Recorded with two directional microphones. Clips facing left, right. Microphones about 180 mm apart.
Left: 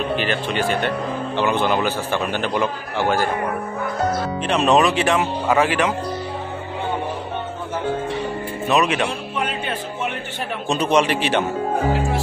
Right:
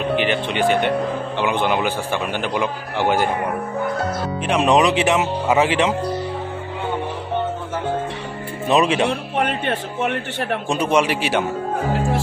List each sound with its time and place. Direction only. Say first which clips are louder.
0.2 s speech: right 2 dB; 15° right (ahead or behind)
4.5 s speech: right 1 dB; 10° right (ahead or behind)
8.6 s speech: right 2 dB; 30° right (ahead or behind)
9.3 s a man's voice: right 4 dB; 55° right (ahead or behind)
10.7 s speech: left 1 dB; 10° right (ahead or behind)